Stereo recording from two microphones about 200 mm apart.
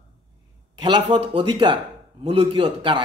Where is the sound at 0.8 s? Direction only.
25° right (ahead or behind).